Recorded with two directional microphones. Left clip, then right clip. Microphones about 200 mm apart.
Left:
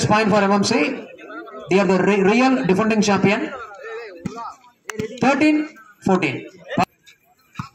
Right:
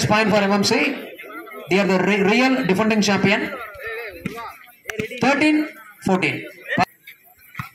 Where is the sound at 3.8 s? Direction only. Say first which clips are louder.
Right 2 dB; 5° left (ahead or behind).